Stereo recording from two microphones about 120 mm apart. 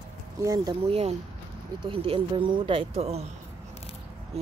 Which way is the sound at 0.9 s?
55° right (ahead or behind).